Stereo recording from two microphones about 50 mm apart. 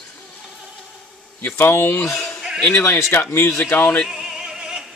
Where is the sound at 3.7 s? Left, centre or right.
Left.